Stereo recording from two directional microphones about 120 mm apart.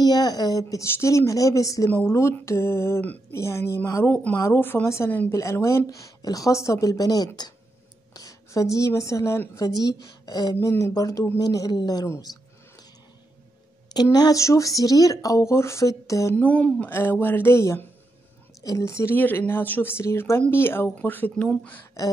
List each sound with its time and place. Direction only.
0.0 s a woman's voice: 35° left (ahead or behind)
8.1 s a sound: 30° left (ahead or behind)
8.7 s a woman's voice: 25° left (ahead or behind)
14.1 s a woman's voice: 30° left (ahead or behind)
16.3 s a woman's voice: 10° left (ahead or behind)
22.0 s a sound: 30° left (ahead or behind)